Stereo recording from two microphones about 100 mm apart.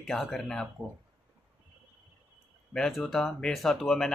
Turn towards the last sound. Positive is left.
turn(degrees=5)  # may be behind; listen again after turning